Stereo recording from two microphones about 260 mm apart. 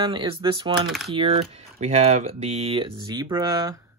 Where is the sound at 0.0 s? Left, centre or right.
Centre.